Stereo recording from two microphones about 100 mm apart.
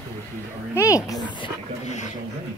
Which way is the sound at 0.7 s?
30° left (ahead or behind).